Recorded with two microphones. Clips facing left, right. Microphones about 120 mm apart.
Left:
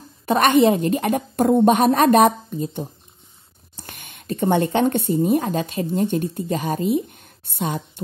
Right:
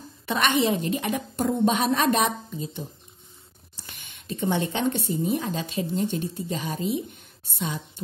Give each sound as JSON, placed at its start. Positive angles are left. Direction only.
{"t": 0.3, "sound": "a woman's voice", "side_deg": 45}